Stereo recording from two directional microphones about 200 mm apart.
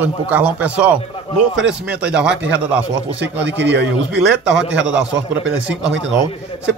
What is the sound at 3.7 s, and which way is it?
Speech, 60° right (ahead or behind).